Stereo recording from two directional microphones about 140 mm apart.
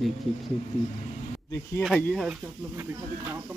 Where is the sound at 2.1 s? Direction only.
5° right (ahead or behind).